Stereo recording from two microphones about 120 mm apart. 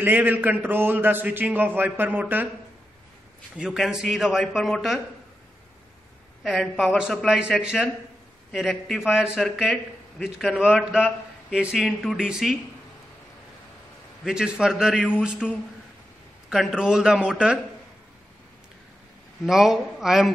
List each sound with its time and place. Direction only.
0.0 s a man's voice: 15° right (ahead or behind)
3.5 s speech: 5° right (ahead or behind)
6.4 s speech: centre (ahead or behind)
14.2 s speech: 5° right (ahead or behind)
16.4 s speech: 5° right (ahead or behind)
19.4 s speech: centre (ahead or behind)